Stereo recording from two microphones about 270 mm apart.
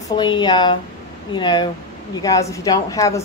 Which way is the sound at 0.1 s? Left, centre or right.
Centre.